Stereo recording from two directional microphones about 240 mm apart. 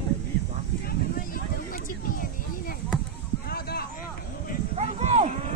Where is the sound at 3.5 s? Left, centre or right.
Left.